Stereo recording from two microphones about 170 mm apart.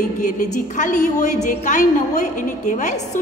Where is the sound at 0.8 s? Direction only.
45° left (ahead or behind).